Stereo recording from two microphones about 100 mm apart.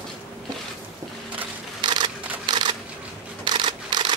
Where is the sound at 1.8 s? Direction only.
50° right (ahead or behind).